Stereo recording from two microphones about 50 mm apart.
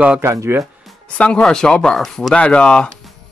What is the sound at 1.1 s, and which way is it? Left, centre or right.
Speech, left.